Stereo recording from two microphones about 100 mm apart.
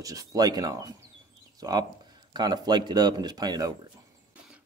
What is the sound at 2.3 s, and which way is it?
Speech, 45° right (ahead or behind).